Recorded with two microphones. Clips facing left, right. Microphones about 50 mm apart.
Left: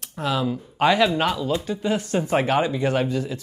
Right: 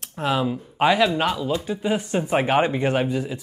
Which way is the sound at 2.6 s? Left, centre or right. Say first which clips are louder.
Right 1 dB; right.